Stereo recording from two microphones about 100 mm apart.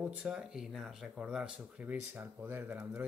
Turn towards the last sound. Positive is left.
turn(degrees=-20)  # may be behind; listen again after turning